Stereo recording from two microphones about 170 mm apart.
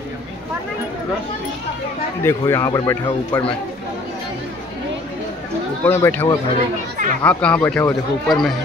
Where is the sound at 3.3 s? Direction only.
10° left (ahead or behind).